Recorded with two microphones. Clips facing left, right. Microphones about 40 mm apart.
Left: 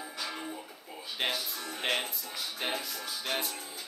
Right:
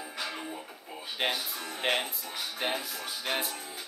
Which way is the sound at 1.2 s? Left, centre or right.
Centre.